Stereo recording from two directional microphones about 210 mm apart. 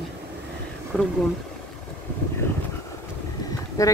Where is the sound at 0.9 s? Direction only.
5° left (ahead or behind).